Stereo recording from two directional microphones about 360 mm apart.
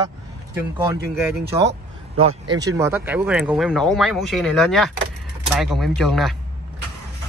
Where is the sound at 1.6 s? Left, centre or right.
Right.